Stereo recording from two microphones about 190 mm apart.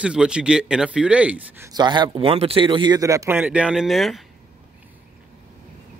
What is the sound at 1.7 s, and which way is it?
A man's voice, 20° right (ahead or behind).